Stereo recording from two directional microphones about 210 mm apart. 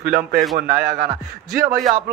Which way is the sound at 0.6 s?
45° right (ahead or behind).